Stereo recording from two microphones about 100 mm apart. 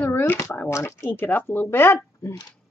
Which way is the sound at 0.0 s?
25° left (ahead or behind).